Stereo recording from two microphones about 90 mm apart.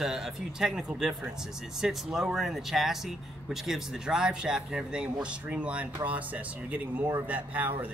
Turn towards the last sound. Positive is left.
turn(degrees=-20)  # may be behind; listen again after turning